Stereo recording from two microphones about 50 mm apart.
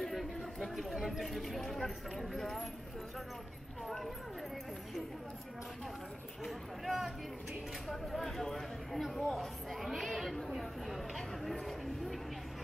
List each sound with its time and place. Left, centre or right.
0.1 s speech: centre
3.8 s speech: centre
6.4 s speech: centre
10.9 s a sound: centre